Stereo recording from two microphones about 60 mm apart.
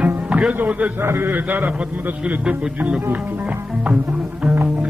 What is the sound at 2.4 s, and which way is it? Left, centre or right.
Speech, centre.